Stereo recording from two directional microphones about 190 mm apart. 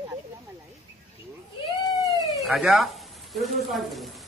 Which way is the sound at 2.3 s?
Centre (ahead or behind).